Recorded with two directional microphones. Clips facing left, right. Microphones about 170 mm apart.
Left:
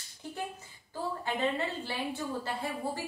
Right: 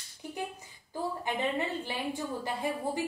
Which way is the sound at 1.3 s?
15° right (ahead or behind).